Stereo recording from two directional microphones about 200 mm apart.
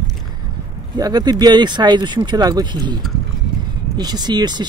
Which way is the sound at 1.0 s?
20° right (ahead or behind).